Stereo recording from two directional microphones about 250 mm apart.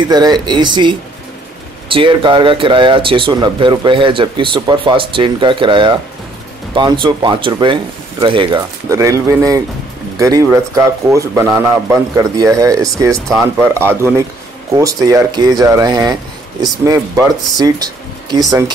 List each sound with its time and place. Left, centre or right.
0.1 s a man's voice: centre